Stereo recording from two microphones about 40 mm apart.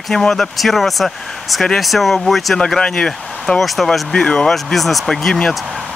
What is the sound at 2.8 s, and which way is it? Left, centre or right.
Speech, left.